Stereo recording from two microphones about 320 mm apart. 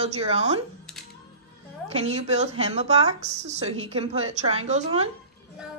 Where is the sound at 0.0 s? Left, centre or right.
Centre.